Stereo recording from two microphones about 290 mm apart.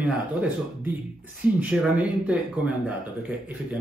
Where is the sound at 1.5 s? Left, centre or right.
Centre.